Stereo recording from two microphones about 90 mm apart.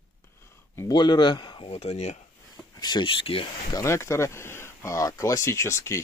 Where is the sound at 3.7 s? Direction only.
35° left (ahead or behind).